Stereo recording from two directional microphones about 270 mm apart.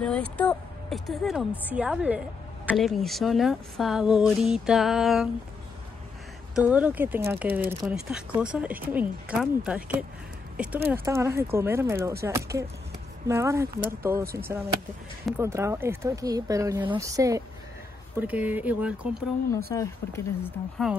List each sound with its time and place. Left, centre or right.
0.0 s speech: centre
6.5 s speech: centre
19.7 s speech: centre